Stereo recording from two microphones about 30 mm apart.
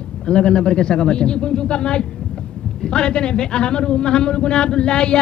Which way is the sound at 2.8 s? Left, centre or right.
Left.